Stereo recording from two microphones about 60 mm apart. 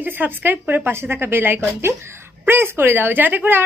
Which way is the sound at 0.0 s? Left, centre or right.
Right.